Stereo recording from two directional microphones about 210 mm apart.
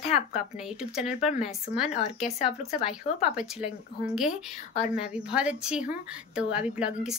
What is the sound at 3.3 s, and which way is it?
A woman's voice, 5° right (ahead or behind).